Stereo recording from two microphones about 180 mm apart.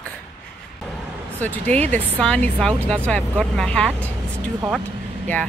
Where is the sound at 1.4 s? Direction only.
10° left (ahead or behind).